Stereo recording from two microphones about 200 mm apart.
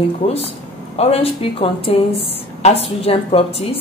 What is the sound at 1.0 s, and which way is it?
A woman's voice, 30° left (ahead or behind).